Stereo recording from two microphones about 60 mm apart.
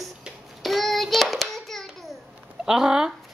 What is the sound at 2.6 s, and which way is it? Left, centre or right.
Speech, centre.